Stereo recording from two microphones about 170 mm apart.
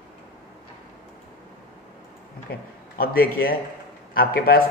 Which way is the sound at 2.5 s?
60° left (ahead or behind).